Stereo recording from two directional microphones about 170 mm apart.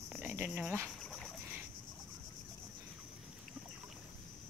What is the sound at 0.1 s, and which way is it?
Cricket, 10° right (ahead or behind).